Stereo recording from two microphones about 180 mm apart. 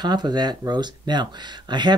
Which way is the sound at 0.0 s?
25° right (ahead or behind).